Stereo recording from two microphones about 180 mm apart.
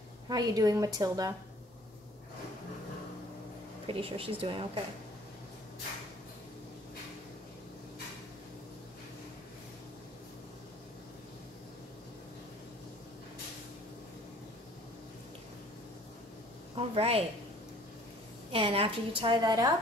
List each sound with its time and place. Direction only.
0.3 s a woman's voice: 20° right (ahead or behind)
3.8 s speech: 30° right (ahead or behind)
16.7 s a woman's voice: 35° right (ahead or behind)
18.5 s a woman's voice: 30° right (ahead or behind)